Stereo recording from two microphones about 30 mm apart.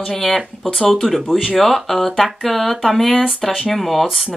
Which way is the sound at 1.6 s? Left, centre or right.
Centre.